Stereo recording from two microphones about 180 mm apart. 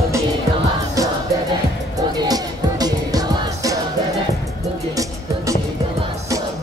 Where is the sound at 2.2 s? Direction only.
20° right (ahead or behind).